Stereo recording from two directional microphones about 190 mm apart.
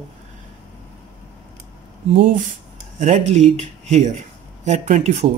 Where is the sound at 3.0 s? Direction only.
35° right (ahead or behind).